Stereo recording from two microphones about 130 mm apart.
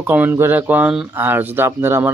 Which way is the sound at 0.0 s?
15° right (ahead or behind).